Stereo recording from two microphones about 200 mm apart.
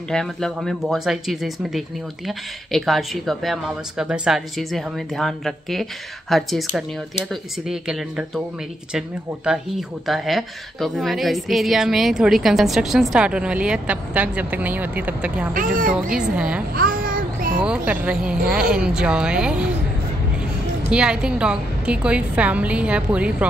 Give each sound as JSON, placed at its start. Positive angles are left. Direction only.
{"t": 0.1, "sound": "speech", "side_deg": 0}
{"t": 15.5, "sound": "speech", "side_deg": -45}
{"t": 15.9, "sound": "speech", "side_deg": -5}
{"t": 16.7, "sound": "a sound", "side_deg": -45}
{"t": 17.6, "sound": "speech", "side_deg": -5}
{"t": 20.9, "sound": "speech", "side_deg": -5}